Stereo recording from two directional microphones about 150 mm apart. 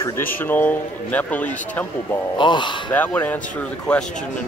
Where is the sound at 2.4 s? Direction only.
30° left (ahead or behind).